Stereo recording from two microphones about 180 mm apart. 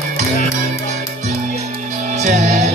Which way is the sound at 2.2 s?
40° right (ahead or behind).